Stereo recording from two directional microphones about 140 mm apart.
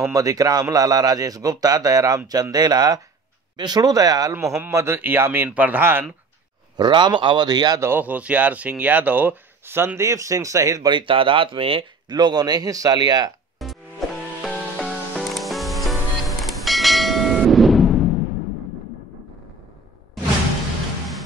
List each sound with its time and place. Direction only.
0.0 s speech: 25° right (ahead or behind)
6.8 s speech: 30° right (ahead or behind)
13.6 s music: centre (ahead or behind)